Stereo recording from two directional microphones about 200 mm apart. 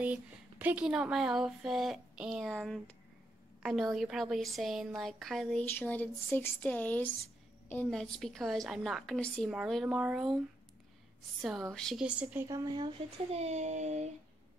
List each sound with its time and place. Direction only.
0.0 s speech: 10° right (ahead or behind)
3.9 s speech: centre (ahead or behind)
11.4 s speech: centre (ahead or behind)
12.4 s speech: 20° right (ahead or behind); by 14.1 s 35° right (ahead or behind)